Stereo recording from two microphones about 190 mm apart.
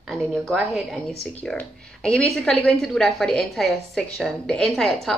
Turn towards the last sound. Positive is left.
turn(degrees=0)  # may be behind; listen again after turning